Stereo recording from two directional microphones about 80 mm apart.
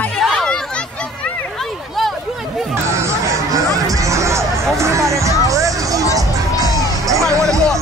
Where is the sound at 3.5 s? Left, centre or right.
Right.